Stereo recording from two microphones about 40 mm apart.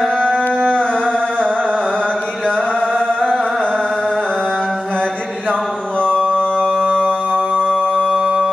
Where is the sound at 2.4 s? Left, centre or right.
Centre.